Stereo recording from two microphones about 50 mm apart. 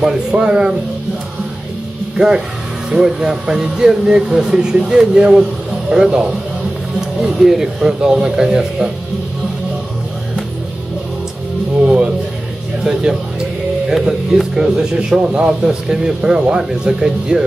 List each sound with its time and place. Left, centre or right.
0.0 s speech: centre
2.1 s speech: centre
11.8 s music: right
13.8 s speech: centre